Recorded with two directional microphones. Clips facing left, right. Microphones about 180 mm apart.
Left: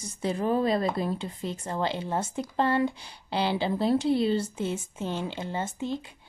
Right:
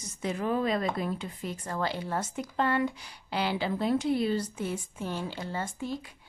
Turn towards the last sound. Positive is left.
turn(degrees=25)  # may be behind; listen again after turning